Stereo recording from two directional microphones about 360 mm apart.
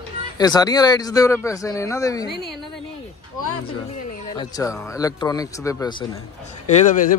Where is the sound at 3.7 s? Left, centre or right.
Centre.